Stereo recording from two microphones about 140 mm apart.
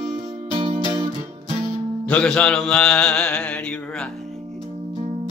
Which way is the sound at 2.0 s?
5° left (ahead or behind).